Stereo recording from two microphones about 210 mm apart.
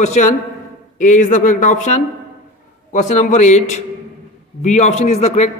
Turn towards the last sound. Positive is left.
turn(degrees=30)  # may be behind; listen again after turning